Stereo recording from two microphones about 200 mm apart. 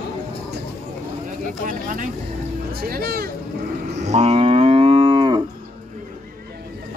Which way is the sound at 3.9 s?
35° right (ahead or behind).